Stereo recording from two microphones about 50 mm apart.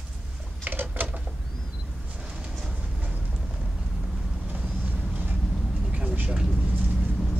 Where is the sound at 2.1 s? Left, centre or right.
Centre.